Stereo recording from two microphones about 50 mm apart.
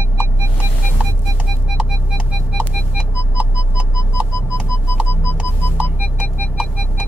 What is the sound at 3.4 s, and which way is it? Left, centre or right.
Music, right.